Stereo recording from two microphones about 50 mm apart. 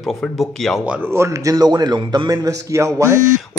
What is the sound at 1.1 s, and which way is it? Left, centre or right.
Speech, right.